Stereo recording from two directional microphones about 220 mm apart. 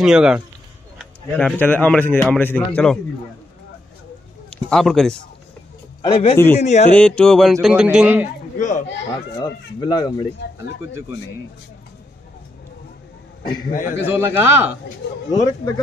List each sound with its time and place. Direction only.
0.0 s a man's voice: 5° right (ahead or behind)
4.5 s a man's voice: 5° left (ahead or behind)
6.0 s speech: 25° left (ahead or behind)
6.3 s a man's voice: 10° left (ahead or behind)
6.6 s speech: 30° left (ahead or behind)
6.9 s a man's voice: 5° left (ahead or behind)
8.5 s speech: 35° left (ahead or behind)
9.4 s speech: 20° left (ahead or behind)
13.7 s speech: 35° left (ahead or behind)
14.0 s a man's voice: 10° right (ahead or behind)